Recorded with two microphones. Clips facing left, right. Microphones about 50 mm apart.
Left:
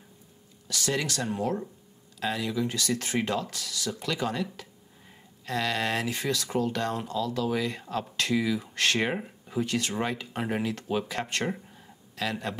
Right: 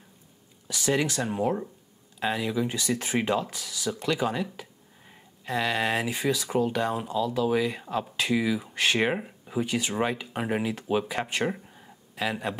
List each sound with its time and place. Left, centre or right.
0.7 s speech: centre